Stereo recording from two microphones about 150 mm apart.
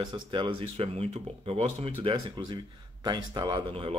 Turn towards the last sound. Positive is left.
turn(degrees=-40)  # may be behind; listen again after turning